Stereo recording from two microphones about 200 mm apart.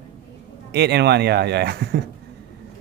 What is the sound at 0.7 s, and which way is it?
A man's voice, 55° right (ahead or behind).